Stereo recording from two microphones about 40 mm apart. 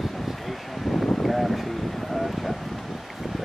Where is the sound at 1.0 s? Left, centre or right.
Centre.